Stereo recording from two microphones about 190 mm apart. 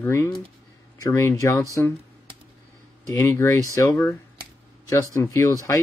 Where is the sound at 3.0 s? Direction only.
15° left (ahead or behind).